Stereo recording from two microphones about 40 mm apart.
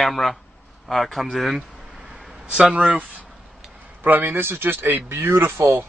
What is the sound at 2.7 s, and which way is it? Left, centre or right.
Speech, right.